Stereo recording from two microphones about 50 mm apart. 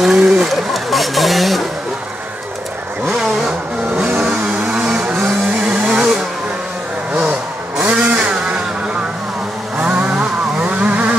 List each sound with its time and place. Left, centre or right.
0.0 s a sound: centre
3.1 s vehicle: centre
4.0 s vehicle: right
4.5 s vehicle: right
7.8 s vehicle: right
9.8 s vehicle: right